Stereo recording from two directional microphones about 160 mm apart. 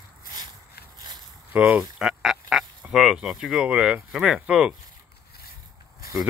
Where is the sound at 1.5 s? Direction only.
10° right (ahead or behind).